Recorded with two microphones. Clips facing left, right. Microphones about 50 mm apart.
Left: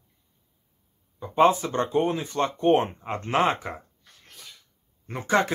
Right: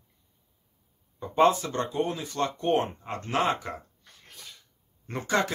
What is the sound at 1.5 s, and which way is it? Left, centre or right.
Speech, left.